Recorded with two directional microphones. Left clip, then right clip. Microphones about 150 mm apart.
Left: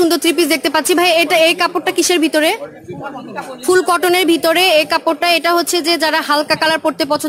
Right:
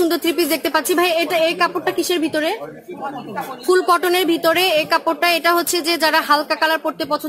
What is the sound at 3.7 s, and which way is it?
A woman's voice, 40° left (ahead or behind).